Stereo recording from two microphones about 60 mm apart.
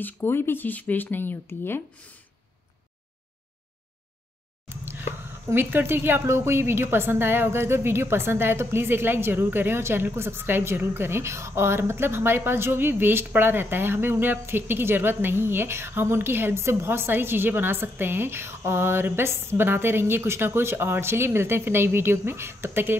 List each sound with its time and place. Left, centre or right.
0.0 s speech: left
5.5 s a woman's voice: right